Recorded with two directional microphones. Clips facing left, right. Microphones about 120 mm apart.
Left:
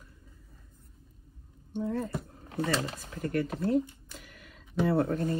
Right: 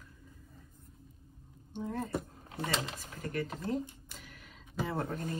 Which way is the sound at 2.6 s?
40° left (ahead or behind).